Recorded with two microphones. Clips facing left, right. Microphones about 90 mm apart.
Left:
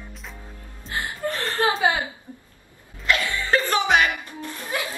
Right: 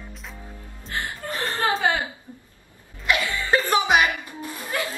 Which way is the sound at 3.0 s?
15° right (ahead or behind).